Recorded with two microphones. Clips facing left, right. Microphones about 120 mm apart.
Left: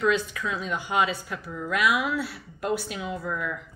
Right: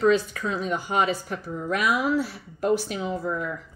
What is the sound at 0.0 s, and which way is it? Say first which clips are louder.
Speech: right 4 dB; 40° right (ahead or behind).